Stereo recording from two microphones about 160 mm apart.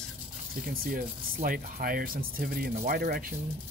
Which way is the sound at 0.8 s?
65° right (ahead or behind).